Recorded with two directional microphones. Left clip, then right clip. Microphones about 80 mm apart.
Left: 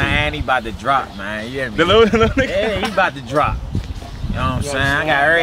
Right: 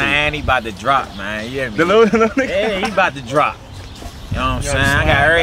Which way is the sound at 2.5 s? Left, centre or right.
Centre.